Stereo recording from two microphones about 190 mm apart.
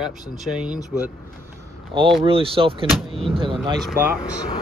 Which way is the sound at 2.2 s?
30° right (ahead or behind).